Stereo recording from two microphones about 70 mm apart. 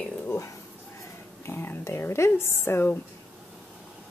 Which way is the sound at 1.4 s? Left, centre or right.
Left.